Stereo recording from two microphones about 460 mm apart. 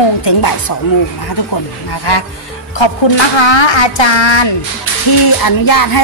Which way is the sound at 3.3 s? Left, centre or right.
Left.